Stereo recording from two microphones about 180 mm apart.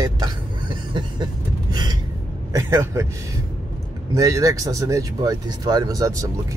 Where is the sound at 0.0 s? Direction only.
25° right (ahead or behind).